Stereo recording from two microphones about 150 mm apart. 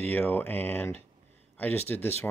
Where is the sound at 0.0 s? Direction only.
10° left (ahead or behind).